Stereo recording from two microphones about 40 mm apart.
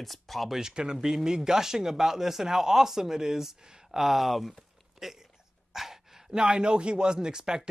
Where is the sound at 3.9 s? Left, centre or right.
Centre.